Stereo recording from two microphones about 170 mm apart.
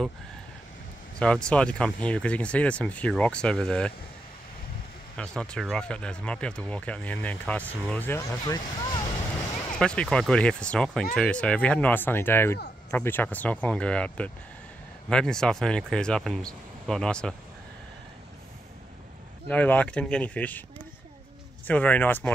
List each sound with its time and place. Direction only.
1.2 s speech: 5° left (ahead or behind)
5.1 s speech: 5° left (ahead or behind); by 9.1 s 20° left (ahead or behind)
9.8 s speech: 5° left (ahead or behind)
19.4 s speech: 10° left (ahead or behind)
21.6 s speech: 10° left (ahead or behind)